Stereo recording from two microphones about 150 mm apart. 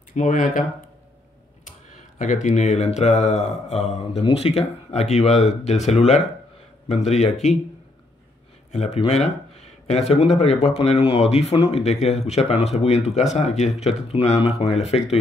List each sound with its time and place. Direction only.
0.1 s speech: 55° left (ahead or behind)
2.1 s speech: 55° left (ahead or behind)
8.7 s speech: 45° left (ahead or behind)